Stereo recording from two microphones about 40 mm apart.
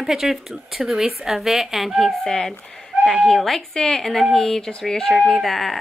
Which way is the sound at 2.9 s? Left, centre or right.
Centre.